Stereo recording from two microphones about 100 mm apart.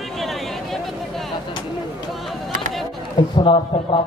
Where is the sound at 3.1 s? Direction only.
55° left (ahead or behind).